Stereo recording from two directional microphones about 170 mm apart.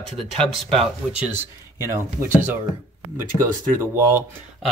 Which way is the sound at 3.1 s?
15° right (ahead or behind).